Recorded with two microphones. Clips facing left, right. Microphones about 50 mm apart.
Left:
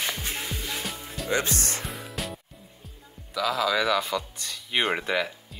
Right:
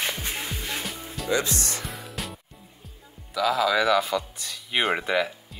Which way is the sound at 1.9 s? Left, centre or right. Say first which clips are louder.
Left 1 dB; centre.